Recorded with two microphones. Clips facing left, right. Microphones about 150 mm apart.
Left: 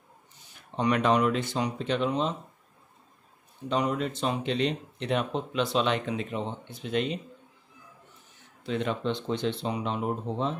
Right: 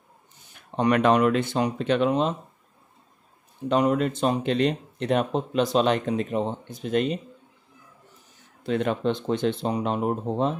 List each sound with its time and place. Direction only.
0.7 s speech: 55° right (ahead or behind)
3.6 s speech: 55° right (ahead or behind)
8.6 s speech: 50° right (ahead or behind)